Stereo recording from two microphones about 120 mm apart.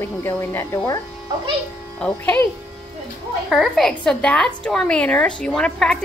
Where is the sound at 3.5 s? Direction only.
5° left (ahead or behind).